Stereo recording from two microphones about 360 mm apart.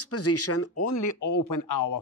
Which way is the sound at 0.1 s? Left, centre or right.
Left.